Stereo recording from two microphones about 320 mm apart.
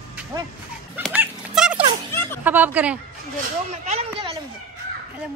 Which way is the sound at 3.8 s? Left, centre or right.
Centre.